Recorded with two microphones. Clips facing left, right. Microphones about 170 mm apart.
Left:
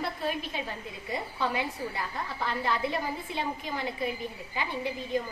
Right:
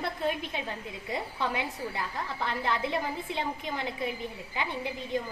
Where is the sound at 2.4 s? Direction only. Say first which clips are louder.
Left 1 dB; 20° right (ahead or behind).